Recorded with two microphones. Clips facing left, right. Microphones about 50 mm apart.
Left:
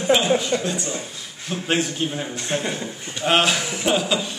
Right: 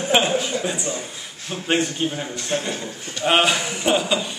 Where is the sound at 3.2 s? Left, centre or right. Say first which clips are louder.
Right 1 dB; centre.